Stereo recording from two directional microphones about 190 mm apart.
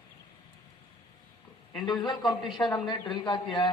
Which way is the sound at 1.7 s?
25° left (ahead or behind).